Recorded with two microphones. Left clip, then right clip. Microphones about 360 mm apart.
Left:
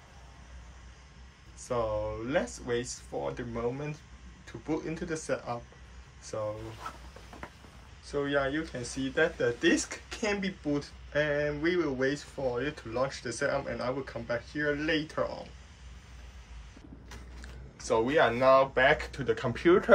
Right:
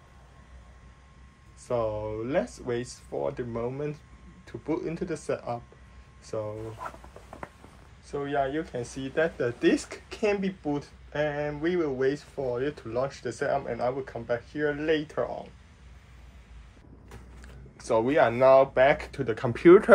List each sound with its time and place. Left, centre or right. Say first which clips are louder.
1.7 s speech: right 2 dB; centre
8.1 s speech: right 1 dB; centre
17.4 s speech: left 2 dB; centre